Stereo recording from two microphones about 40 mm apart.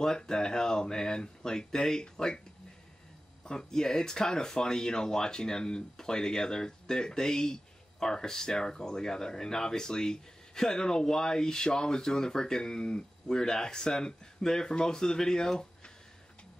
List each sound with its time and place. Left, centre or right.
0.0 s speech: centre
3.4 s speech: centre